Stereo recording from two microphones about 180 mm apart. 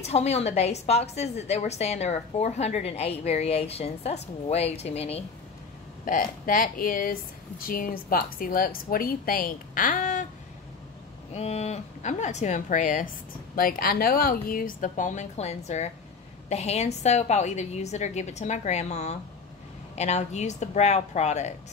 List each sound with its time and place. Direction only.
0.0 s a woman's voice: 35° left (ahead or behind)
6.0 s speech: 50° left (ahead or behind)
11.3 s a woman's voice: 35° left (ahead or behind)